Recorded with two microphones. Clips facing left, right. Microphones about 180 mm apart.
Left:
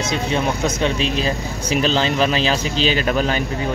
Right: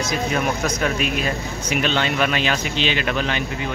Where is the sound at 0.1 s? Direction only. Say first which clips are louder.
Left 2 dB; 25° left (ahead or behind).